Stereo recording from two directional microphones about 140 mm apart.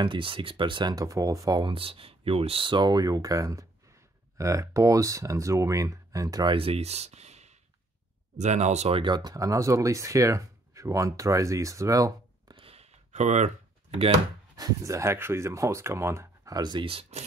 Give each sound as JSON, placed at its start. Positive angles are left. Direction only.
{"t": 0.0, "sound": "speech", "side_deg": -35}
{"t": 6.5, "sound": "speech", "side_deg": -40}
{"t": 9.0, "sound": "speech", "side_deg": -30}
{"t": 12.5, "sound": "computer keyboard", "side_deg": -45}
{"t": 14.6, "sound": "speech", "side_deg": -20}